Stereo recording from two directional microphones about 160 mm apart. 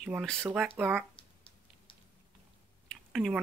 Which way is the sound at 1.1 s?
35° left (ahead or behind).